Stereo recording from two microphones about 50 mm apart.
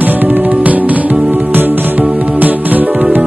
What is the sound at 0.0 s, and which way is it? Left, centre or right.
Music, right.